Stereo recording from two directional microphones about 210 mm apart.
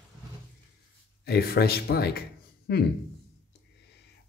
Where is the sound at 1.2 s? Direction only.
50° left (ahead or behind).